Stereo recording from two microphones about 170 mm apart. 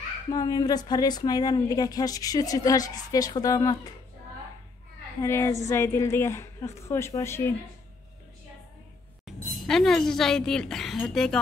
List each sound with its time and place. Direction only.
0.3 s speech: 20° left (ahead or behind)
5.2 s a woman's voice: 15° left (ahead or behind)
9.2 s speech: centre (ahead or behind)